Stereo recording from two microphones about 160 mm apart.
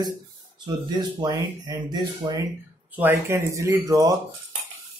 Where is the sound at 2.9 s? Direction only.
15° right (ahead or behind).